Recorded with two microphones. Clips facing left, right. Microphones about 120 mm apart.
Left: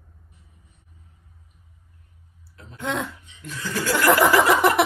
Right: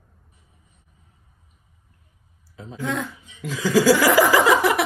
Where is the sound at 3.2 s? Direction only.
90° right.